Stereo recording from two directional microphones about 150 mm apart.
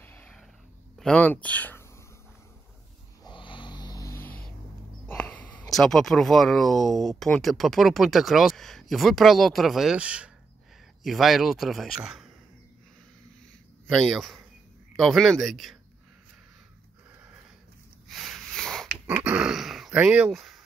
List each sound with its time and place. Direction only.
0.0 s a sound: 10° left (ahead or behind)
0.9 s speech: 5° left (ahead or behind)
3.3 s vehicle: 35° left (ahead or behind)
5.0 s speech: 10° left (ahead or behind)
13.8 s speech: centre (ahead or behind)
18.0 s sniff: centre (ahead or behind)
19.2 s grunt: 5° right (ahead or behind)